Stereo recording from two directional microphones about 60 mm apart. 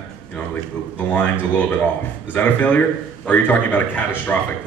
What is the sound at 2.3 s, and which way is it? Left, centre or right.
Speech, left.